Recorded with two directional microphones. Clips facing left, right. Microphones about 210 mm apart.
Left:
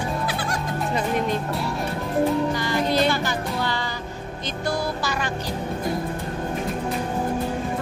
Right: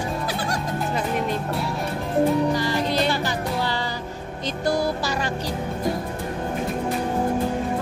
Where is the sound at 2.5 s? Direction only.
35° right (ahead or behind).